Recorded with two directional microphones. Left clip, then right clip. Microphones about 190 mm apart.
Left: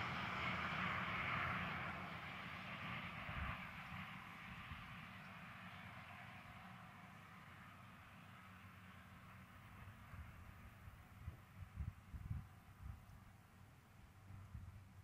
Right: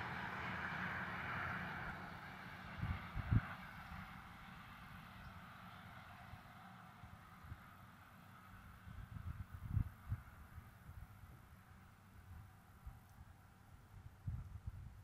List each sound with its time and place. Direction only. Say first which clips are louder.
0.0 s vehicle: left 1 dB; 40° left (ahead or behind)